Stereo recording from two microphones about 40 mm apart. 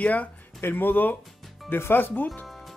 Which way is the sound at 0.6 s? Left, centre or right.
Left.